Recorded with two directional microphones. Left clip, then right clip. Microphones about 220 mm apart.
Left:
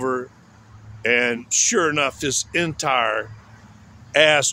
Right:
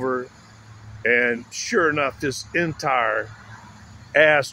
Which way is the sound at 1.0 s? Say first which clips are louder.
Even; 10° left (ahead or behind).